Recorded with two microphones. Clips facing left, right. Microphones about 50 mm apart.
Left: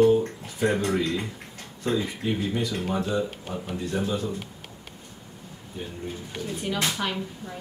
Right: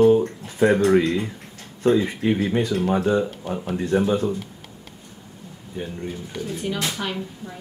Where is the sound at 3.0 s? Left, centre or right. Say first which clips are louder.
Right 6 dB; right.